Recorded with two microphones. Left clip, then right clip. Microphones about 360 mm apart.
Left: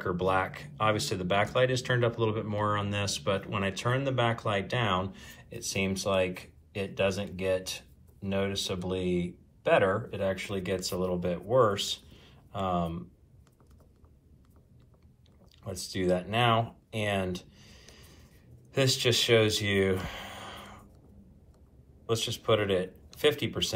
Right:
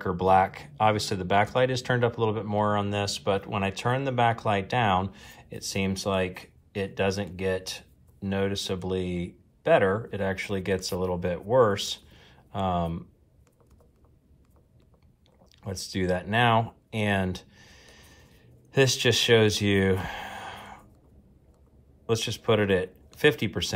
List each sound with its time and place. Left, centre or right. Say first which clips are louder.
0.0 s speech: right 7 dB; centre
15.6 s a sound: right 1 dB; centre
22.0 s speech: right 3 dB; centre